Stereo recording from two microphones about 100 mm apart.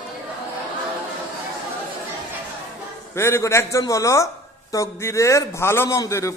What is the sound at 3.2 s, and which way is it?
A man's voice, 25° left (ahead or behind).